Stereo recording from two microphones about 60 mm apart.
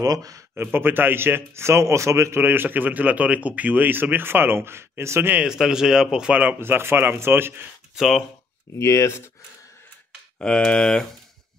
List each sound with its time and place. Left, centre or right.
0.0 s speech: right
0.6 s a man's voice: right
2.4 s speech: right
5.4 s speech: centre
6.6 s speech: right
7.9 s speech: centre
8.7 s speech: left
10.4 s speech: centre